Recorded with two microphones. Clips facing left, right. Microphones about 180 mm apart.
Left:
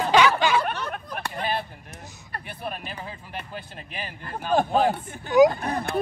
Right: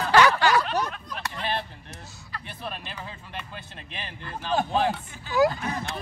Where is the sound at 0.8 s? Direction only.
55° left (ahead or behind).